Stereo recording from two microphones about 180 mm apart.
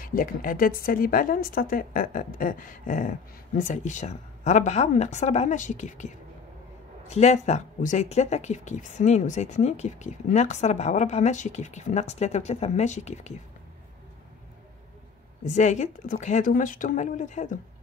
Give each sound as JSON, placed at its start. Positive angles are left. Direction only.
{"t": 0.0, "sound": "a woman's voice", "side_deg": 50}
{"t": 15.4, "sound": "a woman's voice", "side_deg": 40}